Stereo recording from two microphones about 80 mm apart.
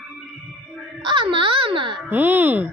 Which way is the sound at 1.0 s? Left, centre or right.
Right.